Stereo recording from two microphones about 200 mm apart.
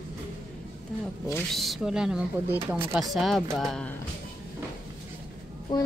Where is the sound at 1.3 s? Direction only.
Centre (ahead or behind).